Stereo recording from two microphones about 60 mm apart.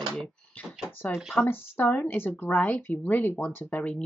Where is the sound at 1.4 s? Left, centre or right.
Left.